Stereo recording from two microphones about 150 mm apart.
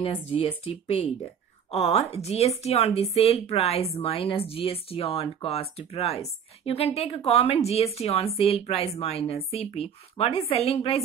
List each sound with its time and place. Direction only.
0.0 s a woman's voice: 35° left (ahead or behind)